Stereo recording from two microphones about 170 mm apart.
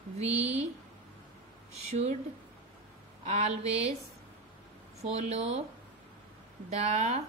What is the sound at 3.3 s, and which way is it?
Speech, 40° right (ahead or behind).